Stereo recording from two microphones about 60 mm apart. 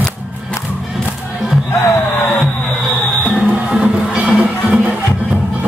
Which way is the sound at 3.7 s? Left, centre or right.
Centre.